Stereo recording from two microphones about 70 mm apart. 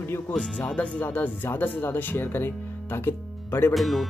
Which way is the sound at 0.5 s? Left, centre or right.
Left.